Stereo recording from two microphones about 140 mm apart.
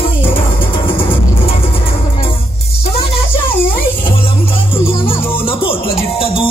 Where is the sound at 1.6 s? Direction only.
40° left (ahead or behind).